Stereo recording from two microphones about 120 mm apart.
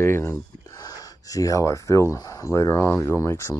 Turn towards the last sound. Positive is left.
turn(degrees=25)  # may be behind; listen again after turning